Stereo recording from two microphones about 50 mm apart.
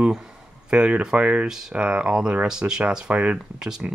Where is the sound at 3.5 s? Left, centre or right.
Centre.